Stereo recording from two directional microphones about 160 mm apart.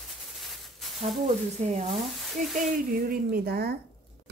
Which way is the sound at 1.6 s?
40° right (ahead or behind).